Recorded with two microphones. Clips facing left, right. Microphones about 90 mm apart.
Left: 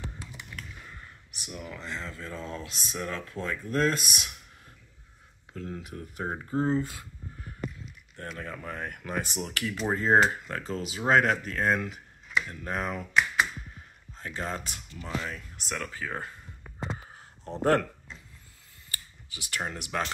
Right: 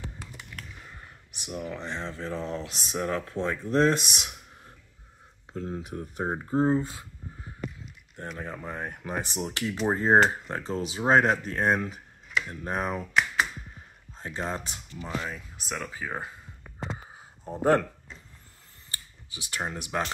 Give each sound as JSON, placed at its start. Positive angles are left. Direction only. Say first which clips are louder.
{"t": 0.9, "sound": "speech", "louder": "even", "side_deg": -25}
{"t": 8.2, "sound": "speech", "louder": "right 2 dB", "side_deg": -20}
{"t": 17.1, "sound": "a sound", "louder": "right 1 dB", "side_deg": -15}
{"t": 18.9, "sound": "camera", "louder": "even", "side_deg": -25}